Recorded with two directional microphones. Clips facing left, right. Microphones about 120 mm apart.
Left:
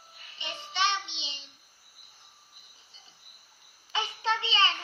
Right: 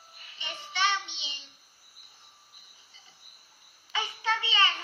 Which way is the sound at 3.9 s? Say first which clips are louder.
Left 1 dB; 20° left (ahead or behind).